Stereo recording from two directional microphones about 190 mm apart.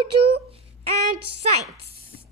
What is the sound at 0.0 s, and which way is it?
A woman's voice, 25° right (ahead or behind).